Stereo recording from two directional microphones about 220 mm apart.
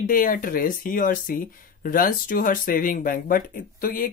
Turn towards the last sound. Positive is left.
turn(degrees=40)  # may be behind; listen again after turning